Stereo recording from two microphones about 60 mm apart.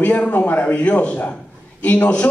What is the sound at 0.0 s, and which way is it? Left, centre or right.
A man's voice, left.